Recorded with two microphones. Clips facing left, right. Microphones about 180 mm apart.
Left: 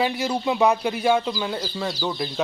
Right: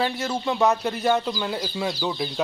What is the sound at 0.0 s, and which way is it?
Speech, 10° left (ahead or behind).